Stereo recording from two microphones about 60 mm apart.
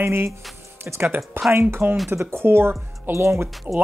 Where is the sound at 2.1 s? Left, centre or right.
Right.